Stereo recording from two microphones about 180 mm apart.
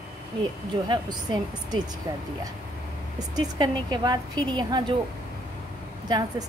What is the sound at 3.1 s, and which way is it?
A woman's voice, 20° right (ahead or behind).